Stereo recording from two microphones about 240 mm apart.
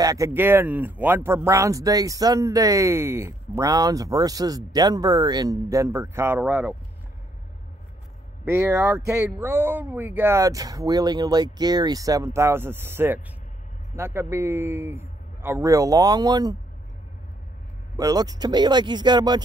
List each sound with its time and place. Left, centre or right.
0.0 s speech: centre
8.5 s speech: centre
17.9 s speech: centre